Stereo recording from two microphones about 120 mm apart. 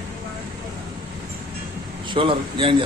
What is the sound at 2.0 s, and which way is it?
Speech, 45° right (ahead or behind).